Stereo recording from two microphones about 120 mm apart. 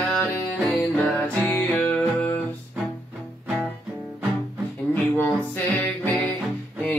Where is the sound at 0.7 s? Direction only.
10° left (ahead or behind).